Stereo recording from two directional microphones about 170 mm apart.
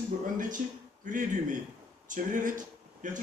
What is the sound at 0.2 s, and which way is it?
A man's voice, 50° right (ahead or behind).